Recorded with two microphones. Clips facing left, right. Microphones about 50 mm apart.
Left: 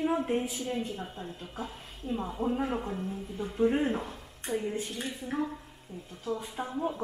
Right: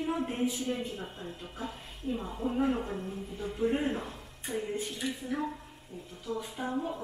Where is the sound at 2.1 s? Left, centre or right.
Centre.